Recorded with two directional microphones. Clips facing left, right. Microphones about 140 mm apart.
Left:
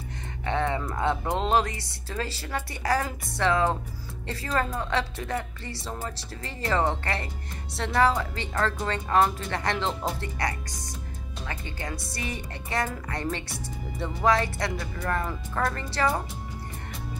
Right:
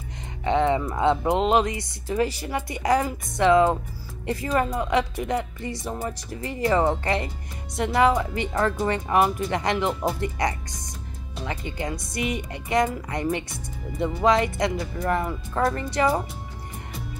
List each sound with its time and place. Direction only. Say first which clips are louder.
0.4 s speech: right 6 dB; 20° right (ahead or behind)